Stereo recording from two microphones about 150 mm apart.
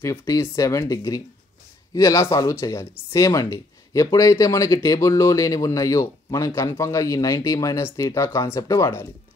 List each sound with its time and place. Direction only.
0.0 s speech: 15° left (ahead or behind)